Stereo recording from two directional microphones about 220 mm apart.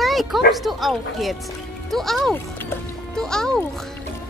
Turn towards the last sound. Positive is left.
turn(degrees=5)  # may be behind; listen again after turning